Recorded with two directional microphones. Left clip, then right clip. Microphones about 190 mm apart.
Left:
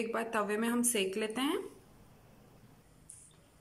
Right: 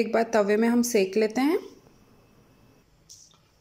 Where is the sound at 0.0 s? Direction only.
35° right (ahead or behind).